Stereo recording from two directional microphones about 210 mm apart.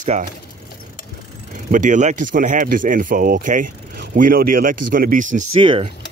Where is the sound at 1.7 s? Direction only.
35° right (ahead or behind).